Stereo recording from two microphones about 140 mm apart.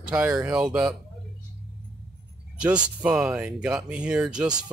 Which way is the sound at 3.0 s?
5° right (ahead or behind).